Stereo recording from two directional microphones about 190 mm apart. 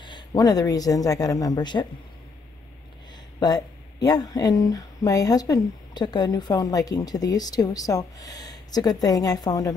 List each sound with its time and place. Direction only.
0.0 s speech: 20° left (ahead or behind)
3.3 s speech: 20° left (ahead or behind)